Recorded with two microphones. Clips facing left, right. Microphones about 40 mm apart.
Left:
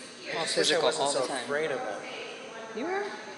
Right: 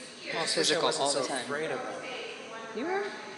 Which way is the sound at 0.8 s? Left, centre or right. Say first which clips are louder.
Left 2 dB; left.